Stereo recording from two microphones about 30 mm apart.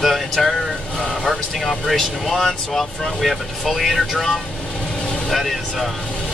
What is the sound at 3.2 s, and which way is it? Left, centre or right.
Speech, centre.